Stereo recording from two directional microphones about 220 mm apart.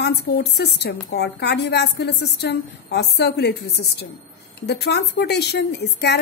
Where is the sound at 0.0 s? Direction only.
50° left (ahead or behind).